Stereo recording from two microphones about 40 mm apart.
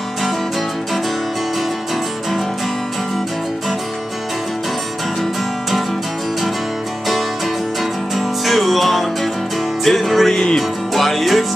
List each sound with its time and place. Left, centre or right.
5.2 s music: centre
8.1 s music: centre
10.3 s music: centre
10.9 s music: centre